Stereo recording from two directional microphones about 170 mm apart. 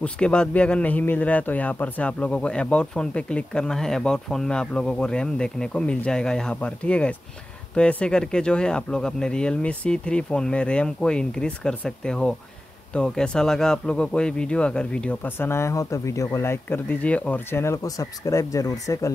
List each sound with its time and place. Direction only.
0.0 s a man's voice: 5° left (ahead or behind)